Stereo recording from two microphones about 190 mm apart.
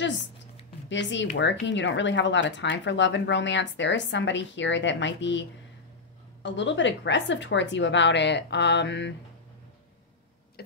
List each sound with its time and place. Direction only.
0.8 s speech: 70° left (ahead or behind)
6.4 s speech: 70° left (ahead or behind)